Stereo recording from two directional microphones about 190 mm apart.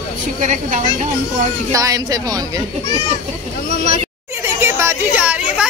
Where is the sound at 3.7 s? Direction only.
45° left (ahead or behind).